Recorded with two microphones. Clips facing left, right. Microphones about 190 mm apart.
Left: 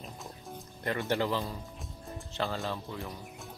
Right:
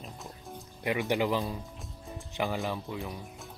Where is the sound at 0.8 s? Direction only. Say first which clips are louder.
Right 2 dB; 15° right (ahead or behind).